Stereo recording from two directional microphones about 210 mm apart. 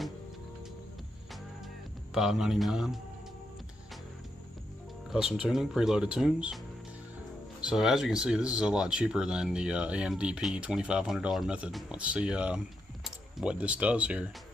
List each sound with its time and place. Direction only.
2.1 s speech: centre (ahead or behind)
5.1 s speech: centre (ahead or behind)
7.6 s speech: centre (ahead or behind)